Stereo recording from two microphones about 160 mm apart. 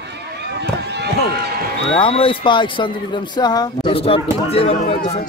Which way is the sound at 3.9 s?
35° left (ahead or behind).